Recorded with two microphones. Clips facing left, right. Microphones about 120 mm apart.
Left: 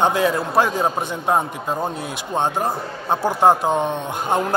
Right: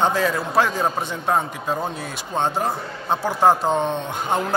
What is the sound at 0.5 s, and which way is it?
A man's voice, 15° left (ahead or behind).